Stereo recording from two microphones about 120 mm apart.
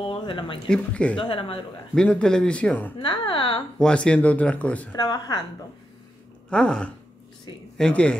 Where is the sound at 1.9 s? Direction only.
10° left (ahead or behind).